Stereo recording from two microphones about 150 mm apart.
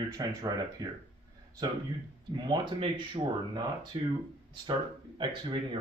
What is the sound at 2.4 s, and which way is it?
Speech, 30° right (ahead or behind).